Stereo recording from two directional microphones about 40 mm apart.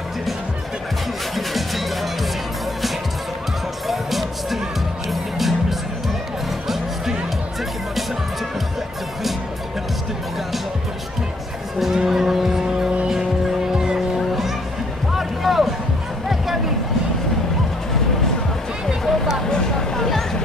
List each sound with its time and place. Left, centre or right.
1.3 s music: centre
3.8 s music: centre
11.9 s music: centre
15.1 s music: centre
19.0 s music: centre
19.5 s a sound: centre